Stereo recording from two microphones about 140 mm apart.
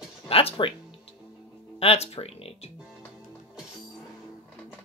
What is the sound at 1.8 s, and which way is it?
Speech, 45° left (ahead or behind).